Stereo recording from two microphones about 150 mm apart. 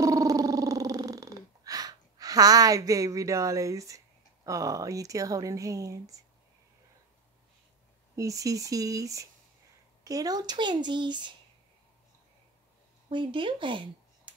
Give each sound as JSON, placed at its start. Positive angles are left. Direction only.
{"t": 0.0, "sound": "a sound", "side_deg": -20}
{"t": 4.5, "sound": "speech", "side_deg": -20}
{"t": 8.2, "sound": "speech", "side_deg": -20}
{"t": 13.1, "sound": "speech", "side_deg": -35}